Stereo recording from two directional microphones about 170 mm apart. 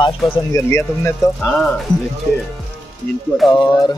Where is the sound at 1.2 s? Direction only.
Centre (ahead or behind).